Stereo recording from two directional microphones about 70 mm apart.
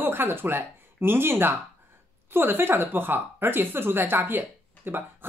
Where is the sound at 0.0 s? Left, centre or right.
Right.